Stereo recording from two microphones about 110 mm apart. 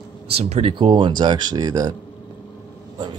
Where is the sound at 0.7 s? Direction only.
45° right (ahead or behind).